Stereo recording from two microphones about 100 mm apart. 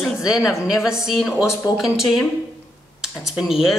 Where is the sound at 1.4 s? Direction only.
35° left (ahead or behind).